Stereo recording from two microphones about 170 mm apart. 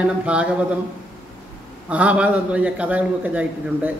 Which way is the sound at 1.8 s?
5° right (ahead or behind).